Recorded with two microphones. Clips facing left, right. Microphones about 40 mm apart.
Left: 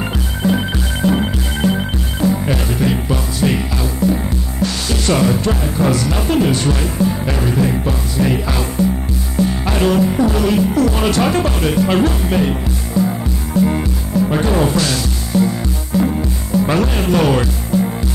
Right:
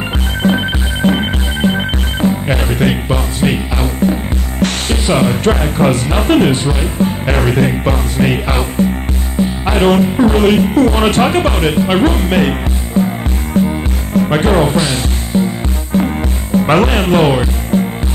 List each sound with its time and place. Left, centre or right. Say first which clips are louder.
0.4 s music: right 3 dB; right
3.7 s speech: right 3 dB; right
4.6 s music: right 4 dB; right
5.0 s speech: right 2 dB; right
5.3 s music: right 4 dB; right
6.5 s speech: right 1 dB; right
7.0 s music: right 3 dB; right
10.0 s speech: right 4 dB; right
13.5 s music: right 1 dB; right
14.1 s speech: right 4 dB; right
14.8 s music: right 2 dB; right
15.9 s music: right 2 dB; right